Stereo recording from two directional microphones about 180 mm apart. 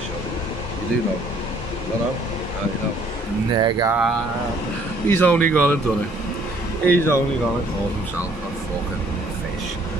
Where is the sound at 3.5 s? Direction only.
25° right (ahead or behind).